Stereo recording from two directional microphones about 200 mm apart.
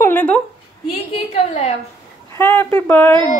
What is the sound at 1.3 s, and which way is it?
Speech, 35° left (ahead or behind).